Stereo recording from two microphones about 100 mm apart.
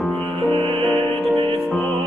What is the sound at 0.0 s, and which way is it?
Music, 10° left (ahead or behind).